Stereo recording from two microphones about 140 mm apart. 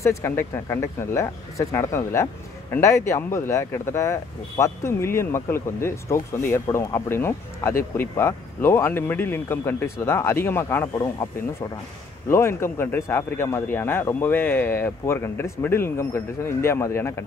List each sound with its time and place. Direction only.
0.0 s speech: 20° left (ahead or behind)
12.3 s speech: 20° left (ahead or behind)